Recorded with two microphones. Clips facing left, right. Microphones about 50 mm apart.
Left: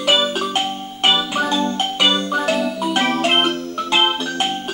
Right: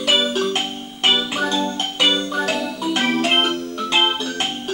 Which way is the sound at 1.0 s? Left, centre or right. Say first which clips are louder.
Left 2 dB; centre.